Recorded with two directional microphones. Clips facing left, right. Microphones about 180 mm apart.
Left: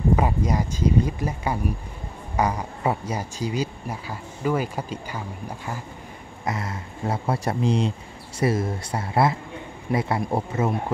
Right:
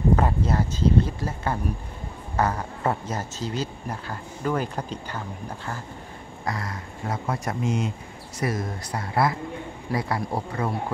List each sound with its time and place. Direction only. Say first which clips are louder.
0.1 s speech: left 1 dB; 10° left (ahead or behind)
6.4 s speech: left 2 dB; 25° left (ahead or behind)